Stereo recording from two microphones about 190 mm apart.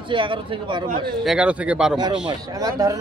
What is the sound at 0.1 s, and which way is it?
Speech, 25° right (ahead or behind).